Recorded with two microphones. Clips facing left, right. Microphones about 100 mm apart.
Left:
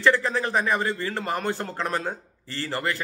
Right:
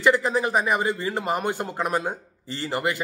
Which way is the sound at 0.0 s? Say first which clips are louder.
Right 1 dB; 15° right (ahead or behind).